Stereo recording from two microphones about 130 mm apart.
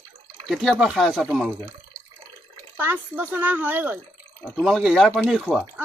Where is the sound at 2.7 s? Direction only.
15° right (ahead or behind).